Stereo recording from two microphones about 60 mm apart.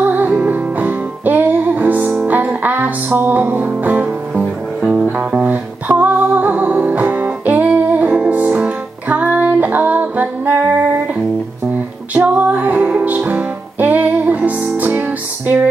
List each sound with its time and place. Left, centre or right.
0.0 s music: right
14.9 s music: right